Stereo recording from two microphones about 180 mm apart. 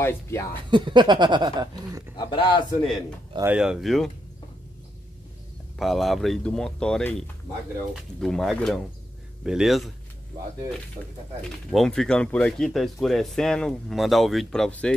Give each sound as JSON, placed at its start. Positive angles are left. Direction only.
{"t": 0.0, "sound": "speech", "side_deg": 10}
{"t": 0.7, "sound": "speech", "side_deg": -25}
{"t": 2.1, "sound": "speech", "side_deg": 30}
{"t": 3.3, "sound": "speech", "side_deg": -10}
{"t": 5.8, "sound": "speech", "side_deg": 0}
{"t": 11.7, "sound": "speech", "side_deg": 0}